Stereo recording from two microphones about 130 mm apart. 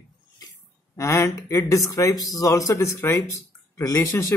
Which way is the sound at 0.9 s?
25° left (ahead or behind).